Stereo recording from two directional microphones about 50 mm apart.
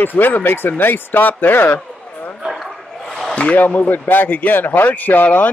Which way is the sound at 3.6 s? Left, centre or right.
Left.